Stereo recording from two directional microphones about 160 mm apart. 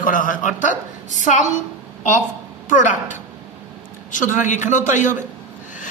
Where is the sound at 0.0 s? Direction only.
55° left (ahead or behind).